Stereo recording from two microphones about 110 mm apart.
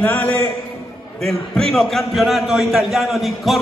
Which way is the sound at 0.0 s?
15° left (ahead or behind).